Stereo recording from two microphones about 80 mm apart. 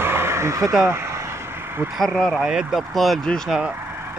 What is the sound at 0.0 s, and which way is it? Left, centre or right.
Vehicle, right.